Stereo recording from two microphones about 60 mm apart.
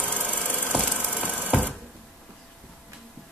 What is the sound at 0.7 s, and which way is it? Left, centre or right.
Engine, centre.